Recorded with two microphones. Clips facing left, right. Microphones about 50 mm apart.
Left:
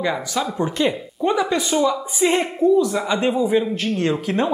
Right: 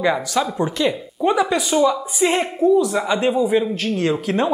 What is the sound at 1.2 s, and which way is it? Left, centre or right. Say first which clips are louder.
Speech: right 2 dB; centre.